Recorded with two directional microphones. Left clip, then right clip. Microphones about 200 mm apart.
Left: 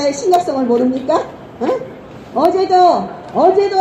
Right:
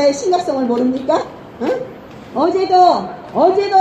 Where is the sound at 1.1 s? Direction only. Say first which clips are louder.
Left 1 dB; 5° right (ahead or behind).